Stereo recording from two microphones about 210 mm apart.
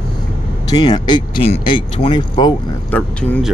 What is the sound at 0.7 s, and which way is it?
Speech, 20° left (ahead or behind).